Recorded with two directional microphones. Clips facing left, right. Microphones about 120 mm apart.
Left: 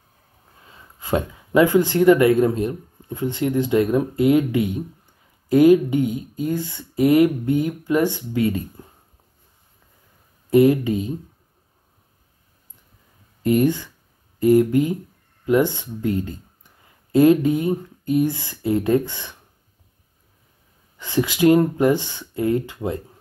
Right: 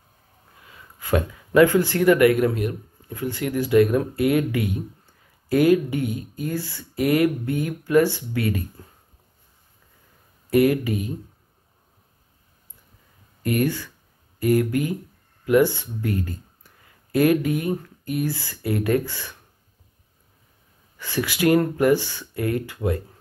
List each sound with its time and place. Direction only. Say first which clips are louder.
0.7 s speech: even; 25° left (ahead or behind)
10.5 s speech: left 3 dB; 25° left (ahead or behind)
13.4 s speech: left 5 dB; 20° left (ahead or behind)
21.0 s speech: left 4 dB; 20° left (ahead or behind)